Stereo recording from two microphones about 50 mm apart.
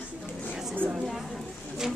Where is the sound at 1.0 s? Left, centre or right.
Centre.